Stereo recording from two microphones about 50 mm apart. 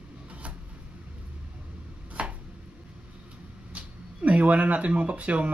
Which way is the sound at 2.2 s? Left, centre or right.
Right.